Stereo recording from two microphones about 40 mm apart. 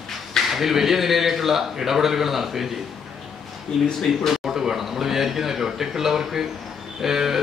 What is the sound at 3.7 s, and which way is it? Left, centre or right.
Speech, centre.